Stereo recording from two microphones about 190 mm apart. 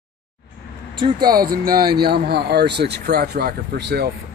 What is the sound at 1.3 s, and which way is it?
Speech, 50° right (ahead or behind).